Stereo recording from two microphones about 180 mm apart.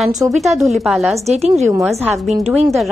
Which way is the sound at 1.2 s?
35° right (ahead or behind).